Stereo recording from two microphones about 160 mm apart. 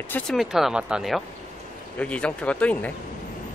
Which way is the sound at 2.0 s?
5° left (ahead or behind).